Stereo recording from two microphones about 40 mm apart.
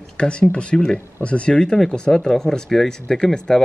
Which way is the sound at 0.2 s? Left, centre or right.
Left.